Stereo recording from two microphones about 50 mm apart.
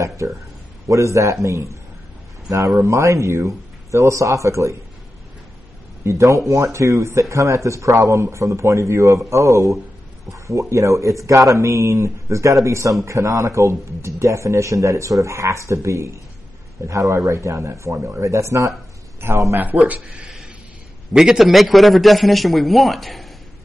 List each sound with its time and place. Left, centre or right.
0.2 s speech: right
2.8 s speech: right
6.0 s speech: right
16.8 s speech: right
19.2 s speech: right
21.1 s a man's voice: centre